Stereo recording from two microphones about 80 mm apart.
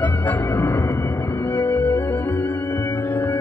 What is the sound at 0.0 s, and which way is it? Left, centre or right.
Music, left.